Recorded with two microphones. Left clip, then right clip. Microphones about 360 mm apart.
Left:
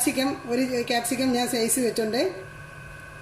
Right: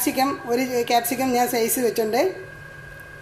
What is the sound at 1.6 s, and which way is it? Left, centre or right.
Speech, right.